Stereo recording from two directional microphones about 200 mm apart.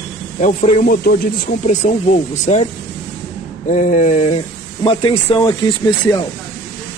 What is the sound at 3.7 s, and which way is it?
Speech, 40° left (ahead or behind).